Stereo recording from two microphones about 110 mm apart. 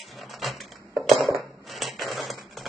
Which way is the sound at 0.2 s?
Centre (ahead or behind).